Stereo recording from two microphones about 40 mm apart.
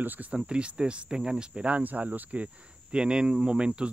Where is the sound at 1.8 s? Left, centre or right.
Right.